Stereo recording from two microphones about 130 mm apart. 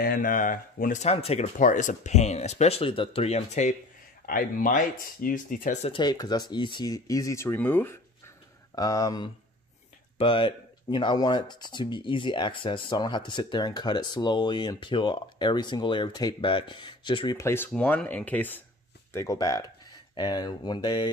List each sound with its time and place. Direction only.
0.1 s speech: 90° left; by 1.5 s 50° left (ahead or behind)
1.6 s speech: 80° left; by 3.7 s 60° left (ahead or behind)
4.3 s speech: 90° left
5.8 s speech: 40° left (ahead or behind); by 8.0 s 15° left (ahead or behind)
8.7 s speech: 30° left (ahead or behind)
10.1 s speech: 40° left (ahead or behind)
17.4 s speech: 20° left (ahead or behind)
19.1 s speech: 25° left (ahead or behind)